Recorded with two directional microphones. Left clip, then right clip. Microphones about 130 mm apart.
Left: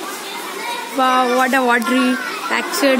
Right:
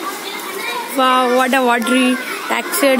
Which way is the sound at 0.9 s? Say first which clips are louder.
Right 1 dB; 10° right (ahead or behind).